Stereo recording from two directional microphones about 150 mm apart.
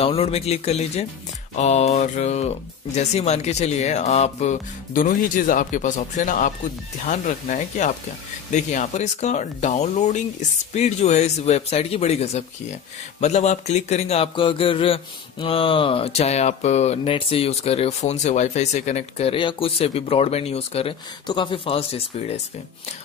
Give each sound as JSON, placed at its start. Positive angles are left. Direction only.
{"t": 0.0, "sound": "speech", "side_deg": 40}